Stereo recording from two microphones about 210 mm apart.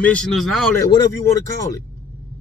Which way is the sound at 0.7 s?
15° left (ahead or behind).